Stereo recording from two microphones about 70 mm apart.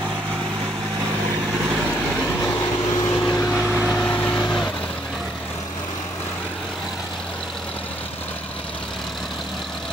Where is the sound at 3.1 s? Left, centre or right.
Left.